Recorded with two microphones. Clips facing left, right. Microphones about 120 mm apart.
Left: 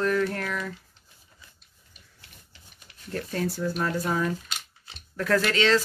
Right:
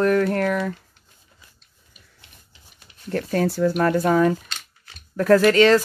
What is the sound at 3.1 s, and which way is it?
Speech, 65° right (ahead or behind).